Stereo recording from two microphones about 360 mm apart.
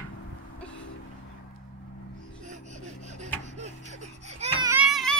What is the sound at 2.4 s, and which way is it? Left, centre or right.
Gasp, centre.